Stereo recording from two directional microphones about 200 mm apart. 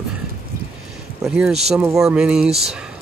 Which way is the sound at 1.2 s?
5° right (ahead or behind).